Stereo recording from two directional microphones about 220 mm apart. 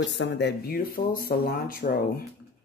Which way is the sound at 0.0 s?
55° left (ahead or behind).